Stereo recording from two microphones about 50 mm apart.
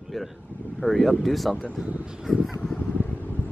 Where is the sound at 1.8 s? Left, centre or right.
Centre.